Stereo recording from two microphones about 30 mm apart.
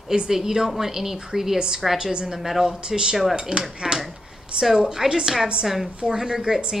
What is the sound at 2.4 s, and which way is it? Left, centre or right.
Speech, centre.